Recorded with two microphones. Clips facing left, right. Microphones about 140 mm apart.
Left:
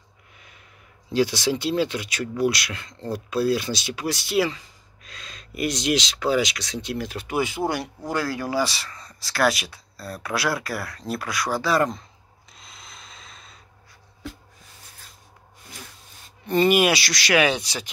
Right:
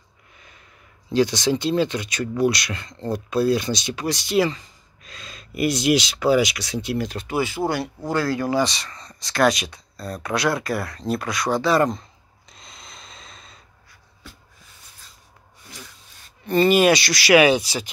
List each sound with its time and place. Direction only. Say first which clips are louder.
1.1 s speech: right 2 dB; 5° left (ahead or behind)
7.1 s speech: right 1 dB; 10° left (ahead or behind)
12.4 s rub: right 2 dB; 5° left (ahead or behind)
16.4 s speech: right 3 dB; 15° left (ahead or behind); by 17.8 s 5° right (ahead or behind)